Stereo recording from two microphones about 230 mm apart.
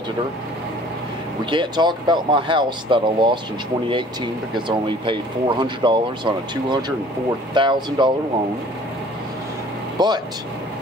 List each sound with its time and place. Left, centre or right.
1.4 s speech: right
4.6 s speech: right
9.9 s speech: centre